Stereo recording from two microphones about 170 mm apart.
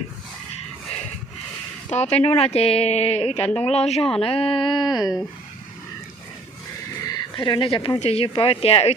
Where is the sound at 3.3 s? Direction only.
10° left (ahead or behind).